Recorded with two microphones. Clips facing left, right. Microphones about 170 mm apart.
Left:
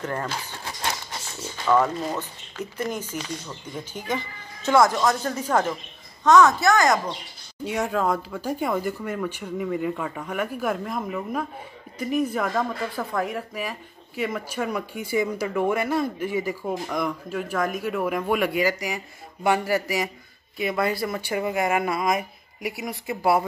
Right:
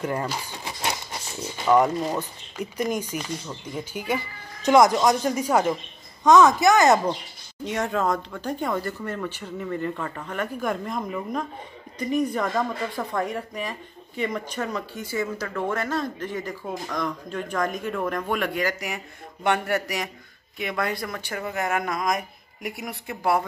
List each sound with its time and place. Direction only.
0.0 s keys jangling: 10° right (ahead or behind)
1.6 s speech: 15° right (ahead or behind)
7.6 s speech: 5° left (ahead or behind)